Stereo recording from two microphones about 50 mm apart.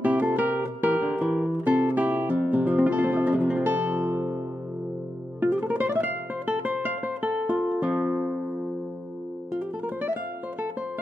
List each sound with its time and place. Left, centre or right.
0.0 s guitar: right
5.4 s music: right